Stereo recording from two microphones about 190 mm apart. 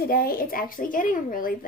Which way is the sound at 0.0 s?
50° left (ahead or behind).